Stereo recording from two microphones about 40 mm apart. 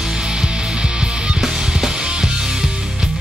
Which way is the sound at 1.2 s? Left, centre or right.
Centre.